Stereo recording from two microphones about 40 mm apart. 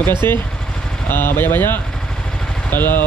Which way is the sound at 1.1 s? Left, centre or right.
Left.